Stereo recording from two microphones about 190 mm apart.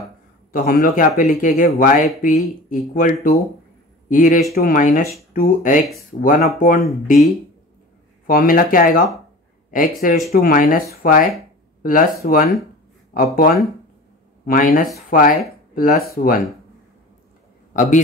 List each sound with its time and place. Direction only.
0.5 s speech: 45° left (ahead or behind)
8.3 s speech: 50° left (ahead or behind)
17.7 s a man's voice: 40° left (ahead or behind)